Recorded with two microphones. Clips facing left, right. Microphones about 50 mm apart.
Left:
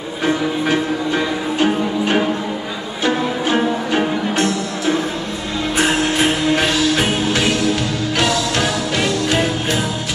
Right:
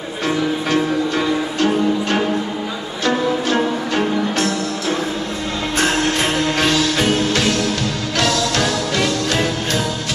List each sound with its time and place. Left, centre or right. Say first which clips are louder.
0.2 s music: left 1 dB; centre